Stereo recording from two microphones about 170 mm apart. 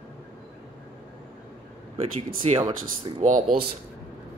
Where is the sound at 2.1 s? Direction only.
35° right (ahead or behind).